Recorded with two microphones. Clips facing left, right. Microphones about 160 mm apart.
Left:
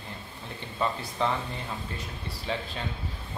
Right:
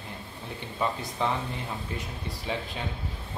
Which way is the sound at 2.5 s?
15° right (ahead or behind).